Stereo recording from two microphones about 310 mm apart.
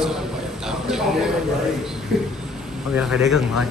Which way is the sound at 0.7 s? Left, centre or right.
Centre.